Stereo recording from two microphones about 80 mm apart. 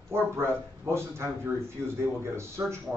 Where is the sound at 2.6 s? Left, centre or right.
Right.